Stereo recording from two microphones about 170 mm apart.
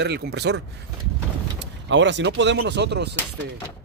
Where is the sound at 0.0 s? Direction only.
80° right.